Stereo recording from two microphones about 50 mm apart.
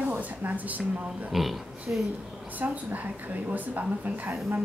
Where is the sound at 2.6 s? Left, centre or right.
Right.